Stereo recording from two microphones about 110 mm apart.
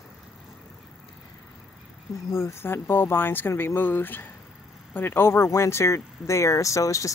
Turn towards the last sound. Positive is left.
turn(degrees=30)  # may be behind; listen again after turning